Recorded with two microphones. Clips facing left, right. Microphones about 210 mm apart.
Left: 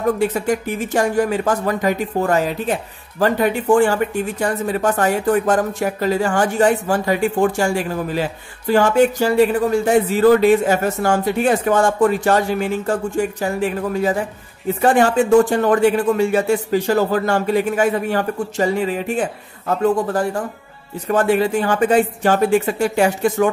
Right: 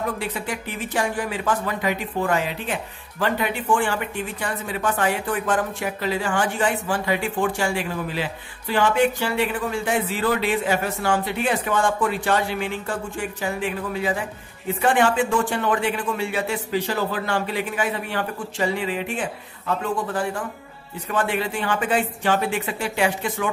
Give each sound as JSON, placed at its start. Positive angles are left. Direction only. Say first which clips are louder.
{"t": 0.2, "sound": "speech", "louder": "left 10 dB", "side_deg": 45}